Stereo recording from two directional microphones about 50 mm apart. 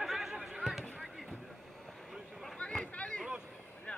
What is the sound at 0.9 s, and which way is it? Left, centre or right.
Basketball bounce, centre.